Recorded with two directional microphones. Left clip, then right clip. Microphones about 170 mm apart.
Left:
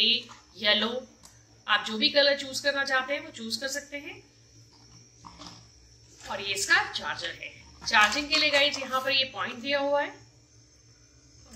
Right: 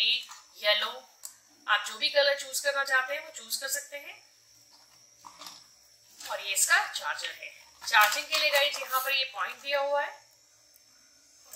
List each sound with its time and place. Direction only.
0.0 s a sound: 55° right (ahead or behind)
1.6 s a woman's voice: 55° right (ahead or behind)
6.3 s a woman's voice: 55° right (ahead or behind)